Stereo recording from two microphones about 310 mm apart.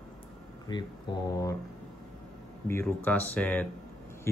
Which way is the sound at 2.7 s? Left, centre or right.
Centre.